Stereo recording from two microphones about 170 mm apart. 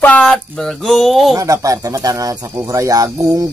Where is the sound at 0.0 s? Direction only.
5° left (ahead or behind).